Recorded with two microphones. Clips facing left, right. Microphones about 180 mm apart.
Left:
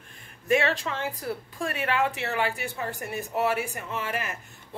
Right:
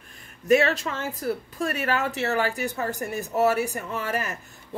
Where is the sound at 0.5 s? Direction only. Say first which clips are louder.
Right 4 dB; 40° right (ahead or behind).